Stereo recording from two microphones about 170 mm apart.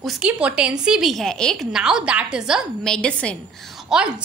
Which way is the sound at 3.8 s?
5° right (ahead or behind).